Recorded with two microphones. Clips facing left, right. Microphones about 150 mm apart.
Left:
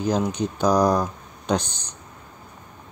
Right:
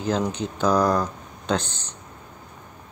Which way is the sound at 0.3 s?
15° left (ahead or behind).